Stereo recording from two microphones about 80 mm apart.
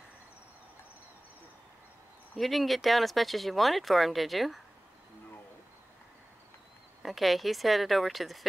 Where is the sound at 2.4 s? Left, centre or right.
Centre.